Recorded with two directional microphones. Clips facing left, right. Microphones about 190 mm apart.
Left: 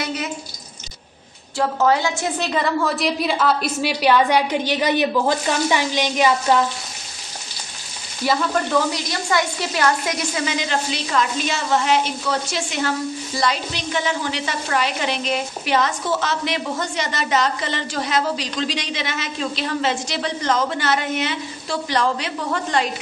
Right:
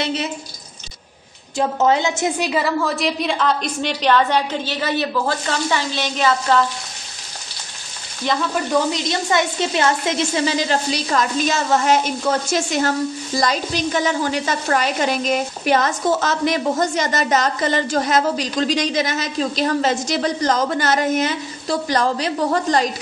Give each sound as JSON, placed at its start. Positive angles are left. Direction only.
{"t": 0.0, "sound": "speech", "side_deg": -25}
{"t": 1.6, "sound": "a woman's voice", "side_deg": -20}
{"t": 8.2, "sound": "a woman's voice", "side_deg": 5}
{"t": 8.7, "sound": "a woman's voice", "side_deg": -20}